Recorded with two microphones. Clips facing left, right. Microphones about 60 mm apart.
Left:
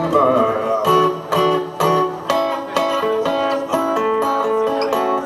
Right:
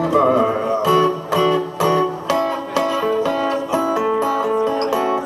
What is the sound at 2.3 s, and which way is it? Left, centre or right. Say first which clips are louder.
Music: left 1 dB; left.